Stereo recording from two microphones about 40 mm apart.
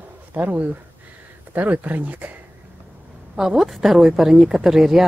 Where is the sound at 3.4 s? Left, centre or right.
Centre.